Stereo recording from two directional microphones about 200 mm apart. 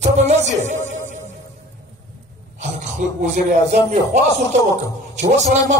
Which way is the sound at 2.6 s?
40° right (ahead or behind).